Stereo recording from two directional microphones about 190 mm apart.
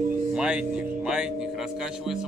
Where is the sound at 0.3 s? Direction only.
5° right (ahead or behind).